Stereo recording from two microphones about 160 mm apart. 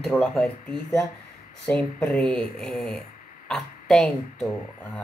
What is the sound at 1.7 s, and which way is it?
Speech, 10° left (ahead or behind).